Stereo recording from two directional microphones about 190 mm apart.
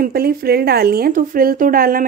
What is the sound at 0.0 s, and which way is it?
Speech, 50° right (ahead or behind).